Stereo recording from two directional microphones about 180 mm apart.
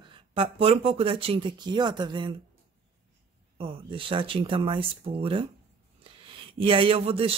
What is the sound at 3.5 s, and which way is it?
Speech, 30° right (ahead or behind).